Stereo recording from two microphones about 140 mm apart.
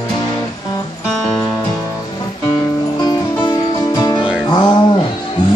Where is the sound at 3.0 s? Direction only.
30° left (ahead or behind).